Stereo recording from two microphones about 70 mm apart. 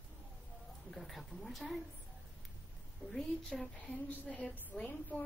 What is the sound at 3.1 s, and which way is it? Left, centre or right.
Speech, centre.